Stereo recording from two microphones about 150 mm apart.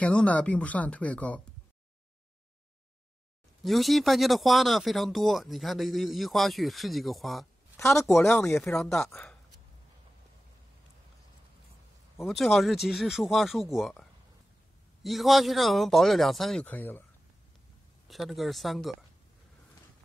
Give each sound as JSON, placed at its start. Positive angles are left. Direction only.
{"t": 0.0, "sound": "speech", "side_deg": 10}
{"t": 3.6, "sound": "speech", "side_deg": 0}
{"t": 9.1, "sound": "a sound", "side_deg": 5}
{"t": 12.3, "sound": "speech", "side_deg": 0}
{"t": 15.0, "sound": "speech", "side_deg": 0}
{"t": 18.0, "sound": "speech", "side_deg": 0}